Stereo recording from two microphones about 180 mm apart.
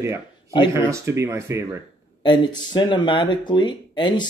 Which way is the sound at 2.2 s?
25° left (ahead or behind).